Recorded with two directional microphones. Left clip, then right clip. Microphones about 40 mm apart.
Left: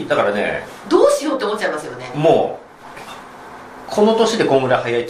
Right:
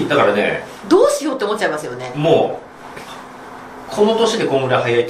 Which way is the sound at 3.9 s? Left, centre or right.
Left.